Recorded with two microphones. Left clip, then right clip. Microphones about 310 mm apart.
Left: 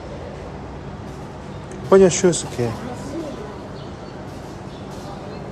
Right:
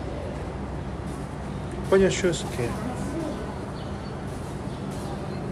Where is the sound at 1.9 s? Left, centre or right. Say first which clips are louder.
Left 8 dB; centre.